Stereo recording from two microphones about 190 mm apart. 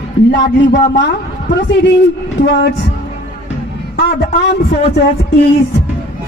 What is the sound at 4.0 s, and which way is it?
Speech, 55° left (ahead or behind).